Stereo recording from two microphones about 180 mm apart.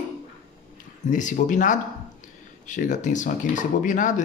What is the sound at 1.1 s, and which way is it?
Speech, 45° left (ahead or behind).